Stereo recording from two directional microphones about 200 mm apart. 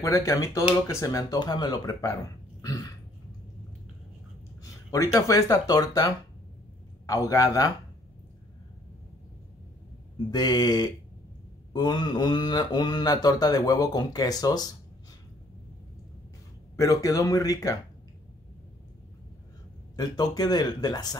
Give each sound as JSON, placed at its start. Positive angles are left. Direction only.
{"t": 0.0, "sound": "speech", "side_deg": 15}
{"t": 2.6, "sound": "a sound", "side_deg": 15}
{"t": 4.9, "sound": "speech", "side_deg": 15}
{"t": 10.3, "sound": "speech", "side_deg": 20}
{"t": 16.7, "sound": "speech", "side_deg": 15}
{"t": 20.0, "sound": "speech", "side_deg": 20}